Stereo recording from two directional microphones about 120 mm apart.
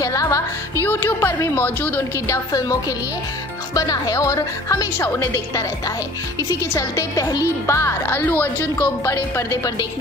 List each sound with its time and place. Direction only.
0.0 s music: 30° left (ahead or behind)
0.8 s speech: 20° left (ahead or behind)